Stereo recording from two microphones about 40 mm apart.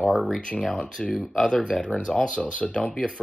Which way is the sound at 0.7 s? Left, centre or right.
Centre.